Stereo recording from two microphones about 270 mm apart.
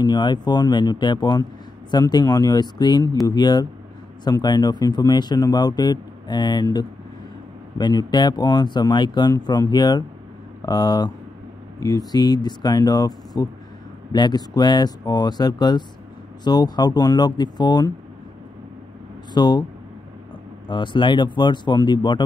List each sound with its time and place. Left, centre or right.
0.0 s speech: centre
19.3 s speech: centre
20.6 s speech: centre